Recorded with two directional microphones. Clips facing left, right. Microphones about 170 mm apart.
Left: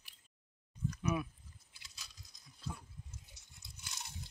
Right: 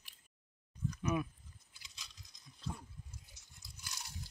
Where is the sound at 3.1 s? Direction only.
25° left (ahead or behind).